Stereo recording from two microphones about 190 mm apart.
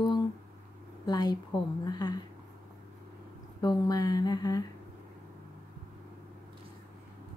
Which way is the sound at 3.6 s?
20° left (ahead or behind).